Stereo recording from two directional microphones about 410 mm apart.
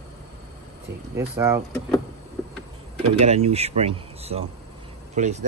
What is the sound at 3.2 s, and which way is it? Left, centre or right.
Speech, centre.